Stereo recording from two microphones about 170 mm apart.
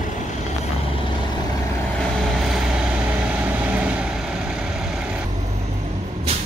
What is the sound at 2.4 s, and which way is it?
Vehicle, 5° right (ahead or behind).